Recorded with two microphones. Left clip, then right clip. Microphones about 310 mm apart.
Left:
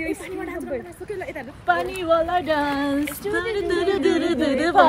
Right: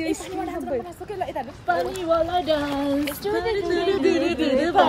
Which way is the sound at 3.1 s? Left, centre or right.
Centre.